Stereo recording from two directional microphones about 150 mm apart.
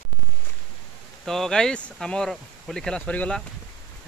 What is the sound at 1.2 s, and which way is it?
Speech, centre (ahead or behind).